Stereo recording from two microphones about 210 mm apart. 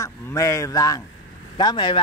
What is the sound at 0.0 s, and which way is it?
Speech, 15° left (ahead or behind).